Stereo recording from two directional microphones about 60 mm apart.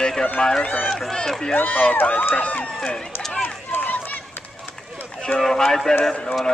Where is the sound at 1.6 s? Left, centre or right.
Left.